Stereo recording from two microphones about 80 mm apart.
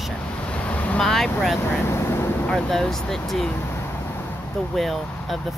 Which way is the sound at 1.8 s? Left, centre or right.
Left.